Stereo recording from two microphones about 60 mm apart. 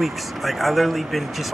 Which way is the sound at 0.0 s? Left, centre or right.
Centre.